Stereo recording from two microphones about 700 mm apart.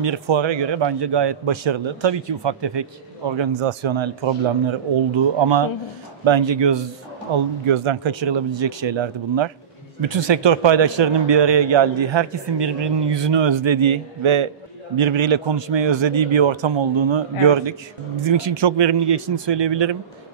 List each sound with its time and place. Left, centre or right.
0.0 s a man's voice: right